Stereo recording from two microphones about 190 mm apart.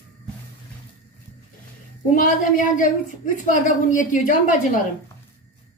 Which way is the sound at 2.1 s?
45° left (ahead or behind).